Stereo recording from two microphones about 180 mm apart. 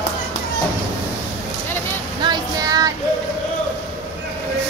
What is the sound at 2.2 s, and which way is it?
Child singing, 20° right (ahead or behind).